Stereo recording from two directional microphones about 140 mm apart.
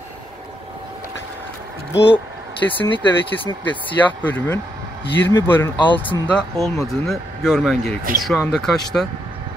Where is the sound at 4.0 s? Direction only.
10° left (ahead or behind).